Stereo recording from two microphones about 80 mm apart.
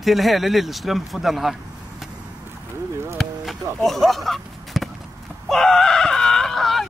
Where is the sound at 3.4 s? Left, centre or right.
Centre.